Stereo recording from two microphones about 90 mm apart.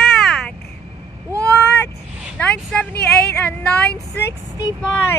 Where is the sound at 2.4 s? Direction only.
10° left (ahead or behind).